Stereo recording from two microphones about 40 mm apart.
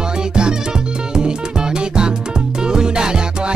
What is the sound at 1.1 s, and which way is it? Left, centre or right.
Music, centre.